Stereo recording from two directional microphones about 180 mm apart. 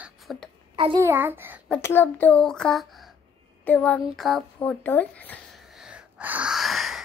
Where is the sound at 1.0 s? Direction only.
10° right (ahead or behind).